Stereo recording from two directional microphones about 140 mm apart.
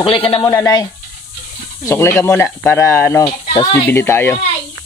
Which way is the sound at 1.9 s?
20° left (ahead or behind).